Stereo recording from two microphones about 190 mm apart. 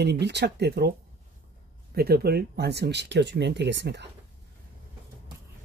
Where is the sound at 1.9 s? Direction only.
55° right (ahead or behind).